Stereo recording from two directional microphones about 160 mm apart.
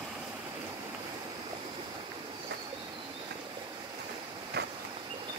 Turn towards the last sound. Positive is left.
turn(degrees=-90)